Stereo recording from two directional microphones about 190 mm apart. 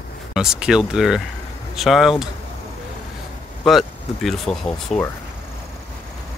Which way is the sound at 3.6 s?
Centre (ahead or behind).